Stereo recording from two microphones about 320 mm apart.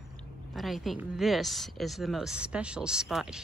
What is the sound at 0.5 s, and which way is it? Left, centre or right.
Speech, centre.